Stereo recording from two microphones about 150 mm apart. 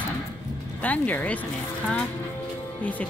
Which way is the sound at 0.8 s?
10° left (ahead or behind).